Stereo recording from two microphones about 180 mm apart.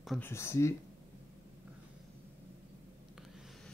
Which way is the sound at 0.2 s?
15° left (ahead or behind).